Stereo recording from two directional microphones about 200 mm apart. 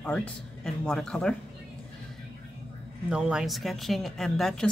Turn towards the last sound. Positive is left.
turn(degrees=0)  # may be behind; listen again after turning